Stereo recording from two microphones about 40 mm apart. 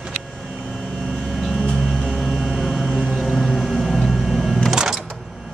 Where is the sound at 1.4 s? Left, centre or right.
Centre.